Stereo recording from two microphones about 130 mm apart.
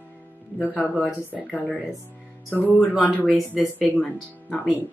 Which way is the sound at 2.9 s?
Centre (ahead or behind).